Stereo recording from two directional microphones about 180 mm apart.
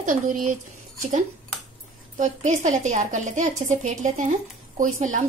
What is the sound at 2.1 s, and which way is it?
A woman's voice, 45° right (ahead or behind).